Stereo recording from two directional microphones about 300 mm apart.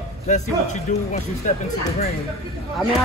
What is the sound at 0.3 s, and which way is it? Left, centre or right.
Speech, left.